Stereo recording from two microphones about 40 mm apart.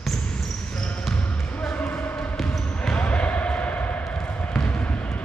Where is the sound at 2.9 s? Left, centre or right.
Left.